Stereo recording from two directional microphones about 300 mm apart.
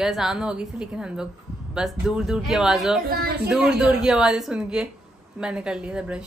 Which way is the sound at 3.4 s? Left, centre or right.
Centre.